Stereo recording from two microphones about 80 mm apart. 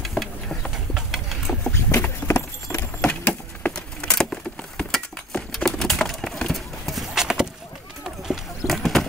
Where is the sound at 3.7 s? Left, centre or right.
Centre.